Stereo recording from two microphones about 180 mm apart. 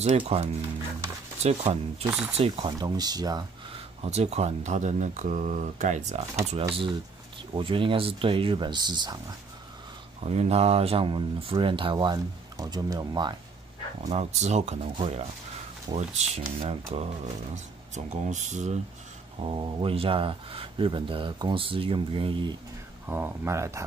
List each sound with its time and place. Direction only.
0.0 s speech: 35° right (ahead or behind)
4.0 s speech: 35° right (ahead or behind)
6.7 s speech: 30° right (ahead or behind)
10.2 s speech: 35° right (ahead or behind)
14.0 s speech: 40° right (ahead or behind)
17.9 s speech: 40° right (ahead or behind)
19.4 s speech: 30° right (ahead or behind)
23.0 s speech: 10° right (ahead or behind)